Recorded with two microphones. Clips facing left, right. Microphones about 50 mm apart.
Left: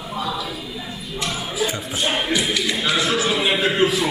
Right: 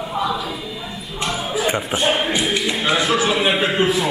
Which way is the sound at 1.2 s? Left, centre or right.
Right.